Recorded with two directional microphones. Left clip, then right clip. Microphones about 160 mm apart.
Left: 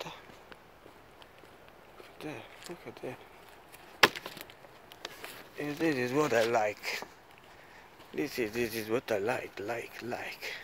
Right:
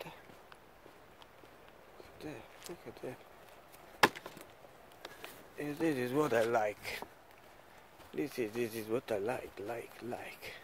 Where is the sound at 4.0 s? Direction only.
35° right (ahead or behind).